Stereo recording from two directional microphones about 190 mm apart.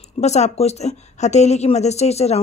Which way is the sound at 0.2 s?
35° left (ahead or behind).